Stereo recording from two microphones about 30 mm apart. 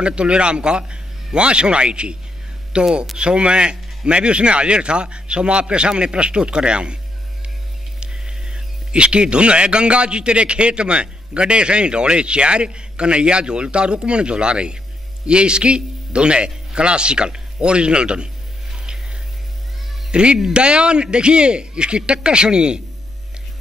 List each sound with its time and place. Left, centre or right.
0.0 s a man's voice: right
8.0 s a man's voice: right
20.1 s a man's voice: right